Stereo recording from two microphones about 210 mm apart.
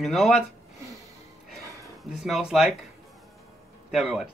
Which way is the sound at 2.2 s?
Centre (ahead or behind).